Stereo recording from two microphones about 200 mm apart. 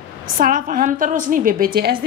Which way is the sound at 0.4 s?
40° right (ahead or behind).